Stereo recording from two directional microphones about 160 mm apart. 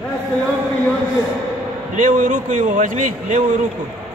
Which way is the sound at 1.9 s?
50° right (ahead or behind).